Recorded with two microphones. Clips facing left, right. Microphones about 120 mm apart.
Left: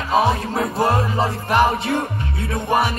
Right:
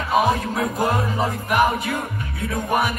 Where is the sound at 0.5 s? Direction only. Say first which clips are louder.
Left 2 dB; 30° left (ahead or behind).